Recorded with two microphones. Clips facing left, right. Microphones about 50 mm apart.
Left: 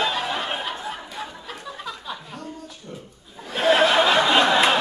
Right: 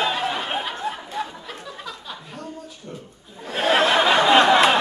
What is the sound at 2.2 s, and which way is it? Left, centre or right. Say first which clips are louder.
Chuckle: right 1 dB; centre.